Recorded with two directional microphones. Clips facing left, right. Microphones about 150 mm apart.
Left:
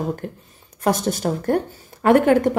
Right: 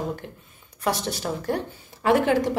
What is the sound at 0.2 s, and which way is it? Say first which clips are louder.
A woman's voice: left 8 dB; 45° left (ahead or behind).